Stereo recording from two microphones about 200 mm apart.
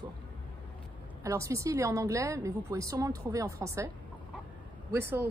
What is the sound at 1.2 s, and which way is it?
A woman's voice, 15° right (ahead or behind).